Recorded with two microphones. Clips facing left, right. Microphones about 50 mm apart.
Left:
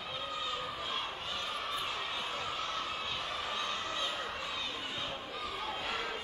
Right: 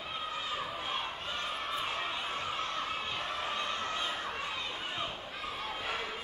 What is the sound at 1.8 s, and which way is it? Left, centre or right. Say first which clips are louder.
Crowd: right 2 dB; right.